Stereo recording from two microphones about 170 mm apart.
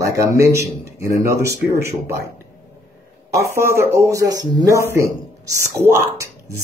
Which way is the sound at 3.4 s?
15° right (ahead or behind).